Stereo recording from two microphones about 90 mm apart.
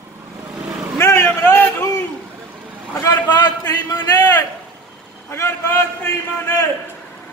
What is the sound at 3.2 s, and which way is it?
Speech, 55° left (ahead or behind).